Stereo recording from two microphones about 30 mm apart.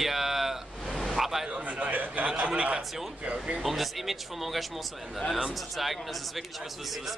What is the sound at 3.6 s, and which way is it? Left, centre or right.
Speech, centre.